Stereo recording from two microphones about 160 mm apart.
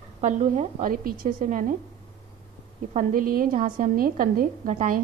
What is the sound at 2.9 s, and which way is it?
A woman's voice, 55° right (ahead or behind).